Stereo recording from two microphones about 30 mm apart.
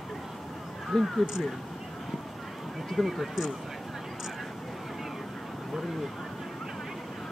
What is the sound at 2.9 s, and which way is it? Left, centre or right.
Speech, centre.